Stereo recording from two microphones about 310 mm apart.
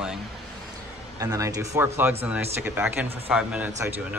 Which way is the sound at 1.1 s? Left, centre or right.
Centre.